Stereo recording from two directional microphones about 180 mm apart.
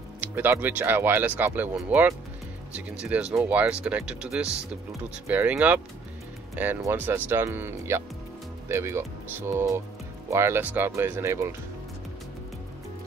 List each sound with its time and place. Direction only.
0.2 s speech: 10° right (ahead or behind)